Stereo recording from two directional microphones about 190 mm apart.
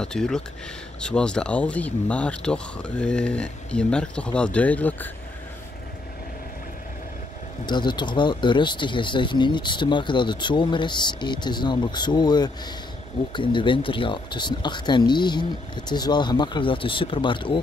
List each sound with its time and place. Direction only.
0.0 s speech: 5° left (ahead or behind)
7.6 s speech: 25° left (ahead or behind)